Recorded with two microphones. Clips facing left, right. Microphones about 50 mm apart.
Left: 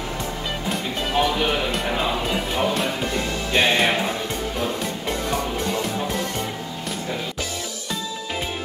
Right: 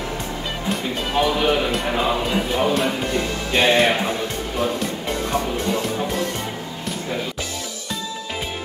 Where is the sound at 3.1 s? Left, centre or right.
Right.